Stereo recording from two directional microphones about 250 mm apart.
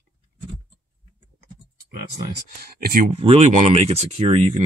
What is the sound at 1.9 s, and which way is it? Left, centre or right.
Speech, right.